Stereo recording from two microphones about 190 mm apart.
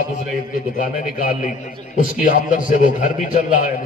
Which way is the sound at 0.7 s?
45° left (ahead or behind).